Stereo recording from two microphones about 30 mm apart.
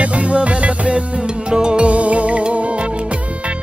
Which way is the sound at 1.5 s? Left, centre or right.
Right.